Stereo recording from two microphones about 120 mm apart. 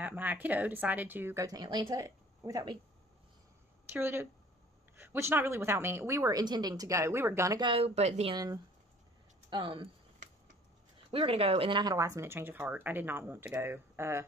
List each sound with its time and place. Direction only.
0.0 s a woman's voice: 15° right (ahead or behind)
1.4 s speech: 35° right (ahead or behind)
3.9 s a woman's voice: 20° right (ahead or behind)
7.6 s speech: 50° right (ahead or behind)
9.5 s speech: 45° right (ahead or behind)
11.1 s speech: 50° right (ahead or behind)
11.8 s a woman's voice: 30° right (ahead or behind)